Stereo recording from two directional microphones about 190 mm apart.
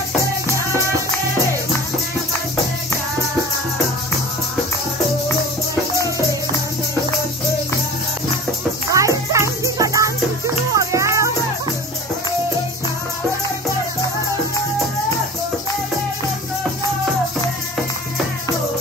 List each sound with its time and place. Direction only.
8.9 s music: 15° right (ahead or behind)